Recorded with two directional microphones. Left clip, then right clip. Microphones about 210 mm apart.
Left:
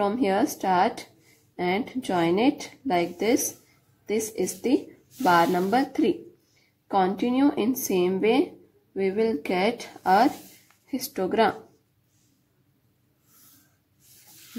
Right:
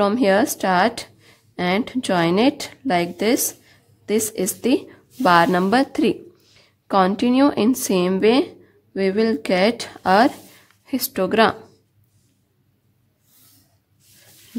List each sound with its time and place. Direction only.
0.0 s a woman's voice: 45° right (ahead or behind)